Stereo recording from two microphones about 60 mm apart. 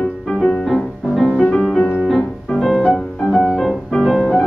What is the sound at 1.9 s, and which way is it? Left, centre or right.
Piano, centre.